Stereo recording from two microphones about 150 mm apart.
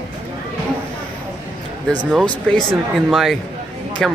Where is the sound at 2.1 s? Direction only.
5° left (ahead or behind).